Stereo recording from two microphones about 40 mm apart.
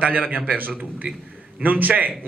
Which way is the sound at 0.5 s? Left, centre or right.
Right.